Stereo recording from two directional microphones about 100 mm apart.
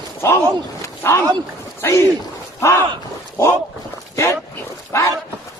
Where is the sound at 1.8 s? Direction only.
25° left (ahead or behind).